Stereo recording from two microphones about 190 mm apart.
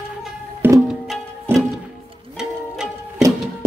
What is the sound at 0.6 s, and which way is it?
Music, 10° right (ahead or behind).